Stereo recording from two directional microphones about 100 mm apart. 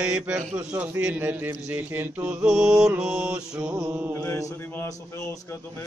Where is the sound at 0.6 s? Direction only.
15° right (ahead or behind).